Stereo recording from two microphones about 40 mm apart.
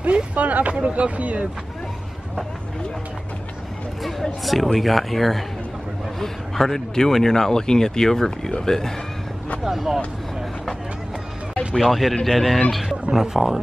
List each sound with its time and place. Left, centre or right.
0.0 s speech: right
4.0 s speech: centre
9.7 s speech: centre
11.8 s speech: centre
13.1 s speech: centre